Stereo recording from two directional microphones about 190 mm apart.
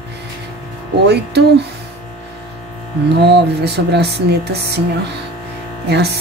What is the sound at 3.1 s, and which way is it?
Speech, 60° right (ahead or behind).